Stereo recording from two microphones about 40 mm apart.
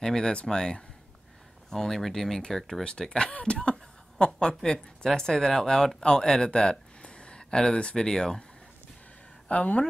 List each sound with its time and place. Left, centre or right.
0.0 s speech: centre
9.5 s speech: left